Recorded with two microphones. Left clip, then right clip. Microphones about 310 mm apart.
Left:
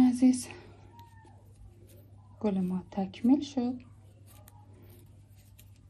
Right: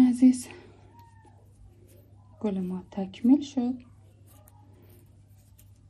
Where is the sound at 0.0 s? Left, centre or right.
Centre.